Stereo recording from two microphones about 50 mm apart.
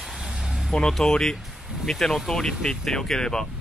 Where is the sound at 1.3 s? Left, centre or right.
Centre.